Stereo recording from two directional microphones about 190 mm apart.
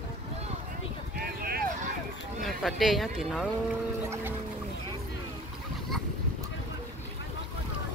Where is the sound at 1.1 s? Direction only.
55° right (ahead or behind).